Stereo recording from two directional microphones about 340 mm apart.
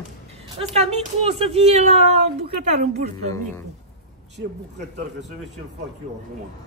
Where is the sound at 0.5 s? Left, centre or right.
Centre.